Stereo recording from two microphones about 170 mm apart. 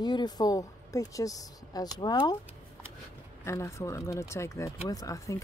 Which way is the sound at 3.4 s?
15° left (ahead or behind).